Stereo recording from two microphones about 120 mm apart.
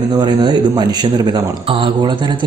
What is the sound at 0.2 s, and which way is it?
Speech, 35° right (ahead or behind).